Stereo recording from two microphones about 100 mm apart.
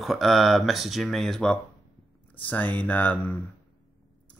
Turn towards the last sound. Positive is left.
turn(degrees=15)  # may be behind; listen again after turning